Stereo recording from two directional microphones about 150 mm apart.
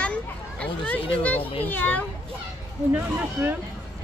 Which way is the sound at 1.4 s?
40° left (ahead or behind).